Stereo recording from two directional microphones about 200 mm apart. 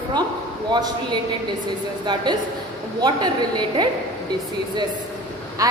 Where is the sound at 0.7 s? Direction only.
20° right (ahead or behind).